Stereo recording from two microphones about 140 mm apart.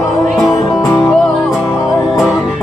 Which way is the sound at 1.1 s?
Centre (ahead or behind).